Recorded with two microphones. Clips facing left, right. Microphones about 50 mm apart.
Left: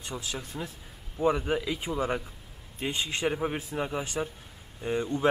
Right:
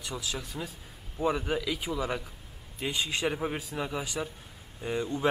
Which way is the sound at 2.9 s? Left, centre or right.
Left.